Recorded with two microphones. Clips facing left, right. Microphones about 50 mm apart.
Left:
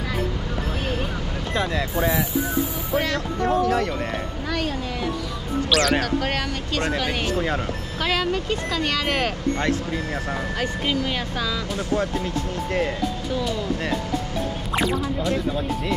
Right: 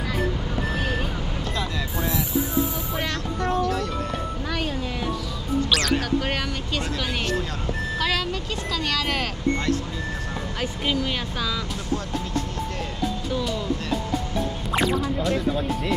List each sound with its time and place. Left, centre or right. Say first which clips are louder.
2.9 s speech: left 5 dB; centre
3.6 s speech: left 4 dB; left
5.7 s speech: left 5 dB; centre
8.0 s speech: left 5 dB; centre
14.7 s speech: even; centre